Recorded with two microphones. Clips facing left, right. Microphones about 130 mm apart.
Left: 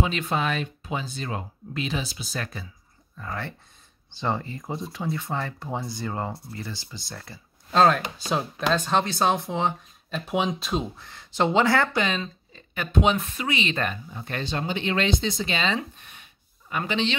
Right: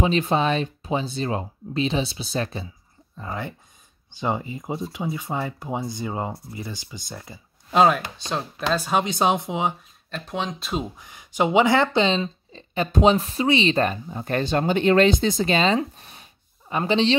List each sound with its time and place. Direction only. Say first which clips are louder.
0.0 s speech: right 5 dB; 30° right (ahead or behind); by 8.0 s 10° right (ahead or behind)
8.2 s speech: left 1 dB; 5° left (ahead or behind); by 9.8 s 15° right (ahead or behind)
10.1 s speech: left 3 dB; 10° left (ahead or behind)
11.0 s speech: right 2 dB; 15° right (ahead or behind); by 17.2 s 35° right (ahead or behind)